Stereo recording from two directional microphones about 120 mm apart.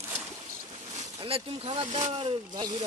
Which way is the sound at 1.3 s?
50° right (ahead or behind).